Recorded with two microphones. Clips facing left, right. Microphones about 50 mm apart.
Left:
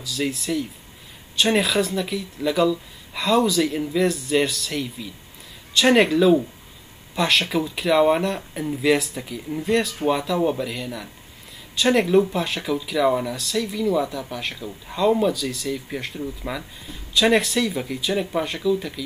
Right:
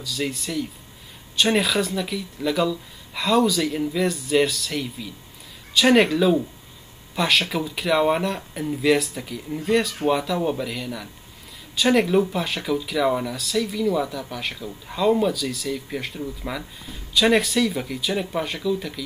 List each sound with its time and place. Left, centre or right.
0.0 s speech: centre